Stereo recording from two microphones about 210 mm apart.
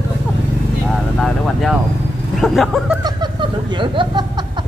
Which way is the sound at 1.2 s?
Centre (ahead or behind).